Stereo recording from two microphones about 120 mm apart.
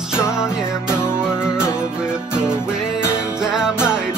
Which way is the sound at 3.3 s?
5° right (ahead or behind).